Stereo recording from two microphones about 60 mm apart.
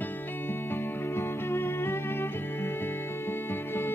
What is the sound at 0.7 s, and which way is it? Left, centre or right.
Music, left.